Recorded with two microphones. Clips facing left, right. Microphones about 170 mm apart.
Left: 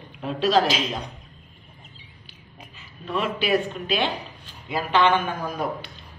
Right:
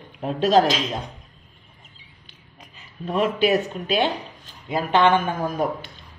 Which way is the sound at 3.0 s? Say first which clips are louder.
Right 5 dB; 45° right (ahead or behind).